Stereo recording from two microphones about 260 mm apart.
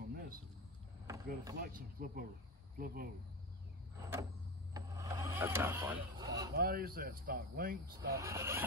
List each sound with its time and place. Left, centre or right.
1.0 s vehicle: centre
1.6 s speech: right
4.7 s a sound: centre
6.5 s speech: right
8.1 s speech: centre